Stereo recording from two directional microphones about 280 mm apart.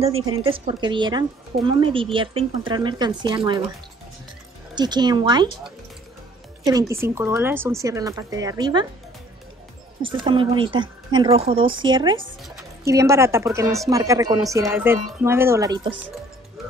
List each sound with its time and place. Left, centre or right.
0.3 s speech: centre
4.7 s speech: centre
6.6 s speech: centre
10.0 s speech: centre